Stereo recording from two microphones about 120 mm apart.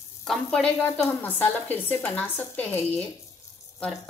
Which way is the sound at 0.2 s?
5° left (ahead or behind).